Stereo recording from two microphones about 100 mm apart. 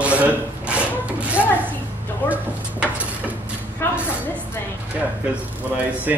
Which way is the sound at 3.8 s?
20° left (ahead or behind).